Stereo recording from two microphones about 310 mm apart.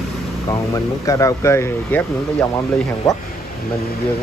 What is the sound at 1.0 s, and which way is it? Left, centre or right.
Speech, centre.